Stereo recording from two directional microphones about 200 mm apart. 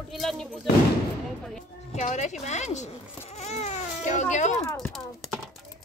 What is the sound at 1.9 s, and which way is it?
Speech, 35° left (ahead or behind).